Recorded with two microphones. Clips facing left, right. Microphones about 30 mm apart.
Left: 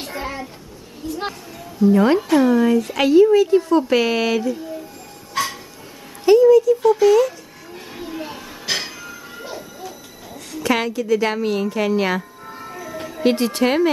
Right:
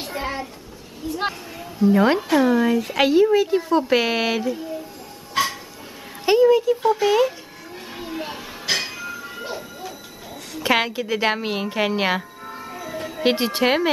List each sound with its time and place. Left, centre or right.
0.2 s a sound: centre
1.1 s a woman's voice: centre
5.3 s music: centre
6.2 s speech: right
6.8 s a woman's voice: right
7.7 s a sound: centre
8.6 s music: centre
8.9 s music: centre
10.6 s a woman's voice: right
12.4 s music: centre
13.2 s a woman's voice: right